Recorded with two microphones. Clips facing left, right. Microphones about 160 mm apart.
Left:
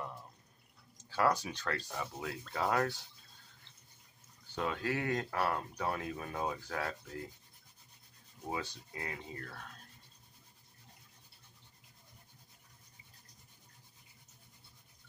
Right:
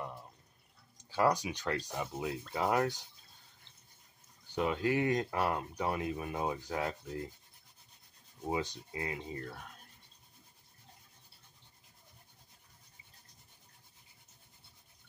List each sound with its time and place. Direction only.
1.1 s speech: 15° right (ahead or behind)
4.6 s speech: 20° right (ahead or behind)
8.5 s speech: 20° right (ahead or behind)